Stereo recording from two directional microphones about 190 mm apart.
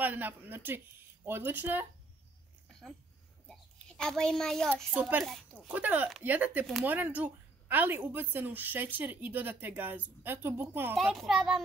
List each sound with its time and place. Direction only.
0.0 s speech: 10° right (ahead or behind)
3.4 s a woman's voice: centre (ahead or behind)